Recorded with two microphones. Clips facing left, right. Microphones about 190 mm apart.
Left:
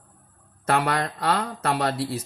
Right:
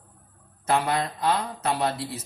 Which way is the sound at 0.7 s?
70° left (ahead or behind).